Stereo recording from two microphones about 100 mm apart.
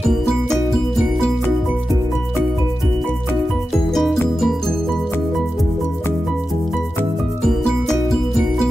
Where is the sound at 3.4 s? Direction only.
Centre (ahead or behind).